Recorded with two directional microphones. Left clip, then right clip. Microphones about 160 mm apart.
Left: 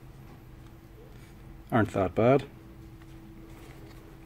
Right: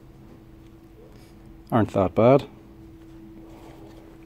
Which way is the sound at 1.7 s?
25° right (ahead or behind).